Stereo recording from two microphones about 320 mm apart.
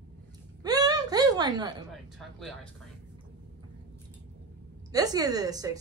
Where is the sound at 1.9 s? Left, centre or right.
Centre.